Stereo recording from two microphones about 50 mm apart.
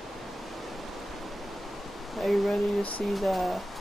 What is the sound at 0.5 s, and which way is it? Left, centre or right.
Pink noise, centre.